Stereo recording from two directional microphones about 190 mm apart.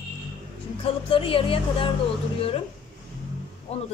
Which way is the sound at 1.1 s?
30° left (ahead or behind).